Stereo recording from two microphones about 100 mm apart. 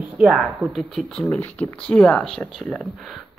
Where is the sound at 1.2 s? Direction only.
15° left (ahead or behind).